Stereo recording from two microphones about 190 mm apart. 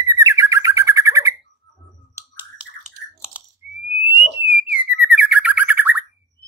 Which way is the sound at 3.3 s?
5° right (ahead or behind).